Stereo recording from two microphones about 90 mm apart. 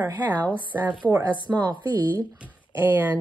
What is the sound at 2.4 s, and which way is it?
Speech, 20° right (ahead or behind).